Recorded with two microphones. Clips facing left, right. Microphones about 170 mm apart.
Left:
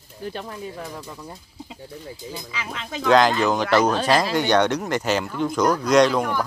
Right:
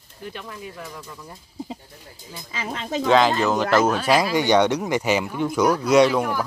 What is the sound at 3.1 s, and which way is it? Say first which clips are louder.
Speech: left 1 dB; centre (ahead or behind).